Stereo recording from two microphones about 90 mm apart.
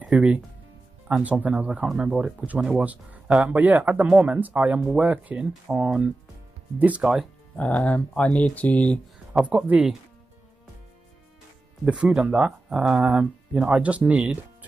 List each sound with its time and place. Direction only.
0.0 s speech: 15° right (ahead or behind)
7.5 s speech: 15° left (ahead or behind)
9.5 s speech: 15° right (ahead or behind)
11.8 s speech: 10° right (ahead or behind)